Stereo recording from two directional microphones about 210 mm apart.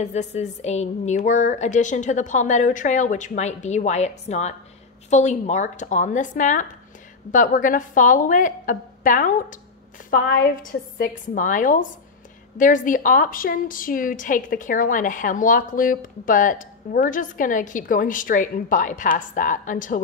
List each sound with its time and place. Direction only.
0.0 s a woman's voice: 35° left (ahead or behind)